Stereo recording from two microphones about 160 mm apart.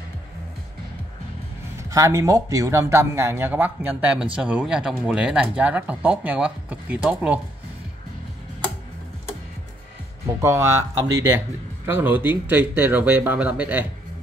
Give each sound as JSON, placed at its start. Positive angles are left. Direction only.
{"t": 1.8, "sound": "speech", "side_deg": -20}
{"t": 10.4, "sound": "speech", "side_deg": -15}